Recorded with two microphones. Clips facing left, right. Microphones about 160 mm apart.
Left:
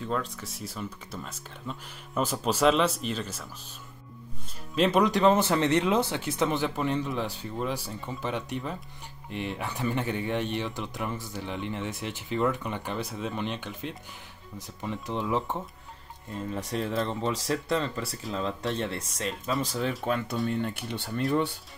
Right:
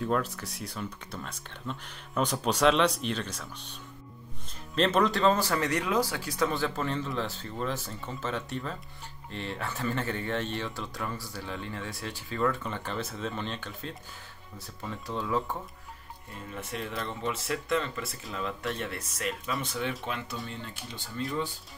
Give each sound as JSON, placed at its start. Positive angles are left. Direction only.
{"t": 0.0, "sound": "speech", "side_deg": 0}
{"t": 4.7, "sound": "speech", "side_deg": 10}
{"t": 16.5, "sound": "speech", "side_deg": 30}
{"t": 20.4, "sound": "speech", "side_deg": 60}